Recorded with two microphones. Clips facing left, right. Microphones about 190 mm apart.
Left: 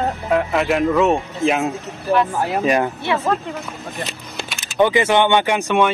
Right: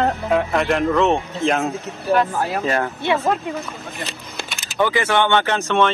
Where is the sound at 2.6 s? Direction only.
15° left (ahead or behind).